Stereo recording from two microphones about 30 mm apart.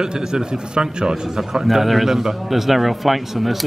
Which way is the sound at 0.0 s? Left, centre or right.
Right.